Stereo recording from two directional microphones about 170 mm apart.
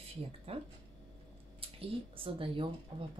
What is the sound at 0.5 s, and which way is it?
Speech, 35° right (ahead or behind).